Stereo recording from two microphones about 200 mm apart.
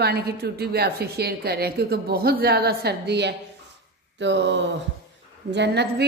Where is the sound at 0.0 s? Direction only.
55° right (ahead or behind).